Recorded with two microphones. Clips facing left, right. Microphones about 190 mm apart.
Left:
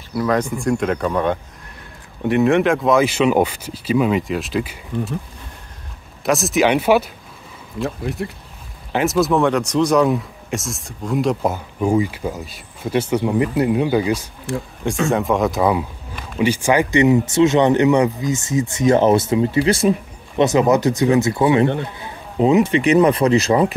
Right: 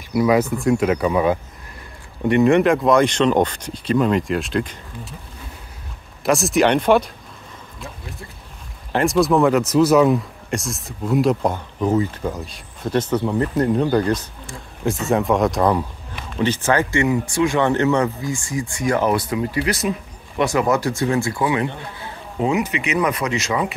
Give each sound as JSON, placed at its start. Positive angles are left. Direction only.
{"t": 0.1, "sound": "speech", "side_deg": -10}
{"t": 6.2, "sound": "speech", "side_deg": 0}
{"t": 7.8, "sound": "speech", "side_deg": 75}
{"t": 8.9, "sound": "speech", "side_deg": 0}